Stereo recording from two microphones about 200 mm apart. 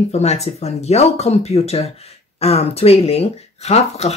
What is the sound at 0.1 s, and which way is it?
Speech, 35° left (ahead or behind).